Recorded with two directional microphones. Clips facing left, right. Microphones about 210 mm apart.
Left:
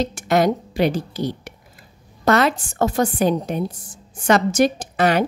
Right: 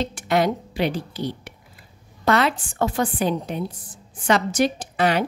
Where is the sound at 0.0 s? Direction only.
45° left (ahead or behind).